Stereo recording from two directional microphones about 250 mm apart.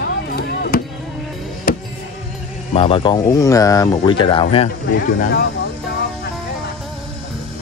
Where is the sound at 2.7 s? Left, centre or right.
Left.